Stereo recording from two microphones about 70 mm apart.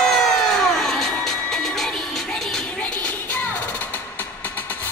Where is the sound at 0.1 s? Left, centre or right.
Centre.